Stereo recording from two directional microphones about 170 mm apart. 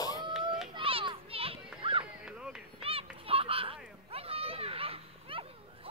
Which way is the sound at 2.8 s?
35° right (ahead or behind).